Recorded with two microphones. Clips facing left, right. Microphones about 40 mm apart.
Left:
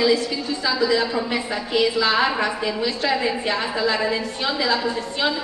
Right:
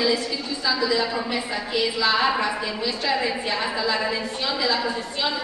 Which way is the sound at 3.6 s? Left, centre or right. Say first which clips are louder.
Left 2 dB; centre.